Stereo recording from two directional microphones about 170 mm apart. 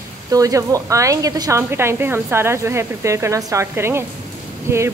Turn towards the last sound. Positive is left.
turn(degrees=-15)  # may be behind; listen again after turning